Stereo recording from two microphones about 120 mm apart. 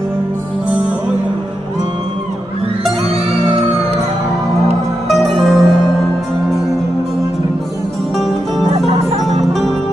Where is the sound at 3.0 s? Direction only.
55° right (ahead or behind).